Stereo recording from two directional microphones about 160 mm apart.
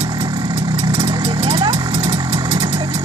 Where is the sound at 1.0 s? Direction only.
30° right (ahead or behind).